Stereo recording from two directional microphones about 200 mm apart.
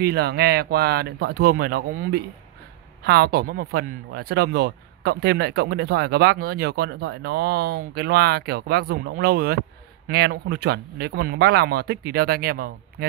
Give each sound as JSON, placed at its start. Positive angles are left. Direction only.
{"t": 0.0, "sound": "speech", "side_deg": -55}